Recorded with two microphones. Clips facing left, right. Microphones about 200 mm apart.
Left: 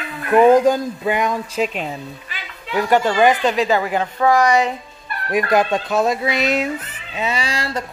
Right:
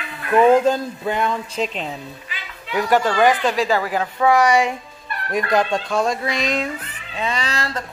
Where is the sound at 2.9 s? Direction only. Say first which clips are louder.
Left 1 dB; 15° left (ahead or behind).